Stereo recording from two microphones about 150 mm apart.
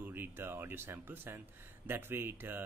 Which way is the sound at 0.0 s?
15° right (ahead or behind).